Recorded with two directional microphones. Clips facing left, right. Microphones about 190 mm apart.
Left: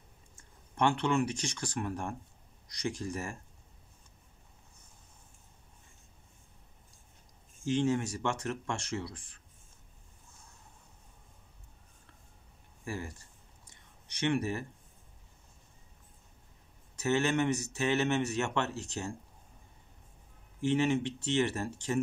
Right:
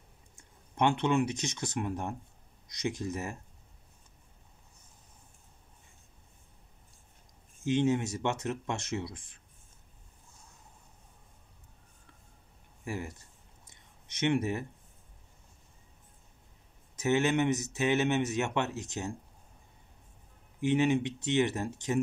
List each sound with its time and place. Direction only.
0.7 s speech: 20° right (ahead or behind)
7.6 s speech: 20° right (ahead or behind)
12.8 s speech: 20° right (ahead or behind)
13.7 s a sound: 20° right (ahead or behind)
16.9 s speech: 20° right (ahead or behind)
20.6 s speech: 15° right (ahead or behind)